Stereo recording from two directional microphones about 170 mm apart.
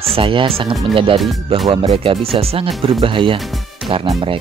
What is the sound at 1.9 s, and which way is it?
Speech, 35° right (ahead or behind).